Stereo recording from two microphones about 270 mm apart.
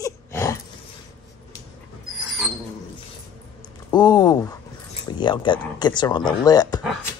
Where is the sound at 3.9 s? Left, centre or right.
Centre.